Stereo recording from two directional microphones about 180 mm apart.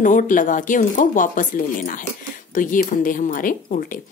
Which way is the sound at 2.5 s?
50° left (ahead or behind).